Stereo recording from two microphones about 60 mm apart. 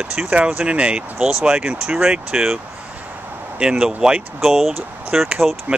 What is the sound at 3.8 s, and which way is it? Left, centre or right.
Speech, centre.